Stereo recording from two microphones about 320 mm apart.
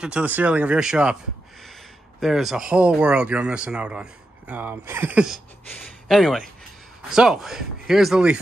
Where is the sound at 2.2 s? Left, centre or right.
Centre.